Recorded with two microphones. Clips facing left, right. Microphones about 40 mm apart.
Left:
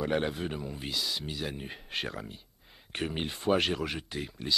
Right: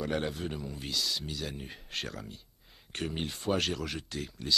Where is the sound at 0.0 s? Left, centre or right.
Centre.